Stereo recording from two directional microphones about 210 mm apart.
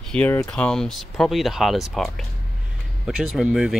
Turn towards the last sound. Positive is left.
turn(degrees=-5)  # may be behind; listen again after turning